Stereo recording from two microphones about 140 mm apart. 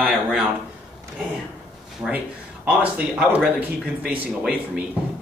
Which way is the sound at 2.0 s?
5° right (ahead or behind).